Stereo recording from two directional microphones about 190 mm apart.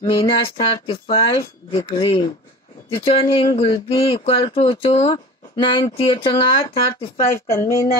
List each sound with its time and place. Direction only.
0.0 s speech: 25° left (ahead or behind)
7.2 s speech: 15° left (ahead or behind)